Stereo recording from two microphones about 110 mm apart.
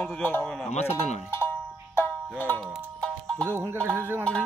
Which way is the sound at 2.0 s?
20° left (ahead or behind).